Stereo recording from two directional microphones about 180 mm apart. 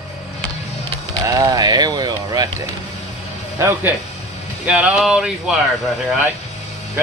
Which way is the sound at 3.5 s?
15° right (ahead or behind).